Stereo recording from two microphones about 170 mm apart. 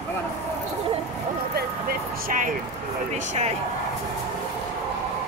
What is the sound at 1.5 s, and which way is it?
Vehicle, 60° right (ahead or behind).